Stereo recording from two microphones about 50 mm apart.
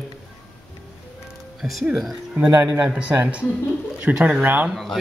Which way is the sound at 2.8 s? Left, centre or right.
Right.